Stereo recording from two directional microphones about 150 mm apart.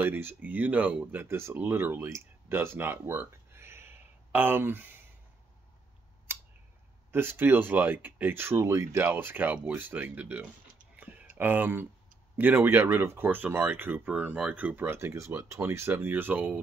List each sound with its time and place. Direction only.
0.0 s speech: 15° right (ahead or behind)
6.3 s scissors: 15° right (ahead or behind)
7.1 s speech: 15° right (ahead or behind)
11.0 s a sound: 10° right (ahead or behind)
12.4 s speech: 15° right (ahead or behind)